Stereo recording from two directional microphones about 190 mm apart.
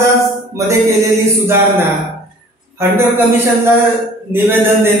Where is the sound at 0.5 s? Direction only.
15° right (ahead or behind).